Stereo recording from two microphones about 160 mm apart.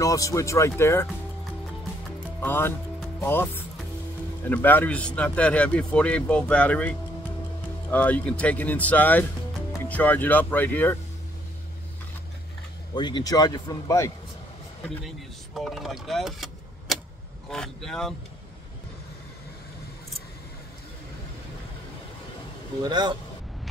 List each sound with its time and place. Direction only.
0.0 s a man's voice: 20° left (ahead or behind)
2.4 s speech: 15° left (ahead or behind)
12.9 s a man's voice: 30° left (ahead or behind)
15.0 s speech: centre (ahead or behind)
17.5 s speech: centre (ahead or behind)
22.8 s a man's voice: 25° right (ahead or behind)